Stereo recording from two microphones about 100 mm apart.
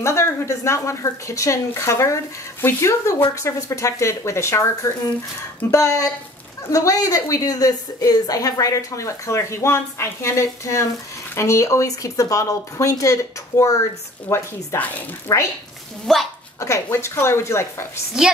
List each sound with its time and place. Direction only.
0.0 s a woman's voice: 30° left (ahead or behind)
15.3 s a woman's voice: 30° left (ahead or behind)
16.1 s speech: centre (ahead or behind)
16.5 s speech: 30° left (ahead or behind)